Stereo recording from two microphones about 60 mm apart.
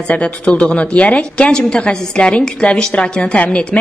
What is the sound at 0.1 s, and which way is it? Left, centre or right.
A woman's voice, centre.